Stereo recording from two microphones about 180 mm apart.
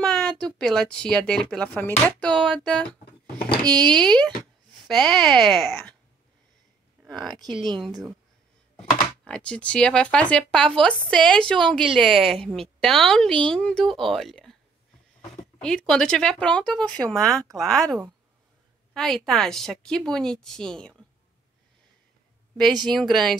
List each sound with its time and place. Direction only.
0.0 s speech: 5° left (ahead or behind)
7.4 s speech: 25° right (ahead or behind)
8.7 s speech: 5° left (ahead or behind)
15.6 s speech: 5° left (ahead or behind)
18.9 s speech: centre (ahead or behind)
22.8 s speech: 5° left (ahead or behind)